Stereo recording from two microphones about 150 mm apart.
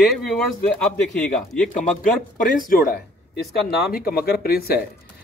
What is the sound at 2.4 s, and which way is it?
Speech, 65° left (ahead or behind).